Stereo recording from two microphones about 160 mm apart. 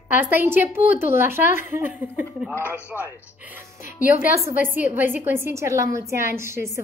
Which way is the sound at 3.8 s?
55° left (ahead or behind).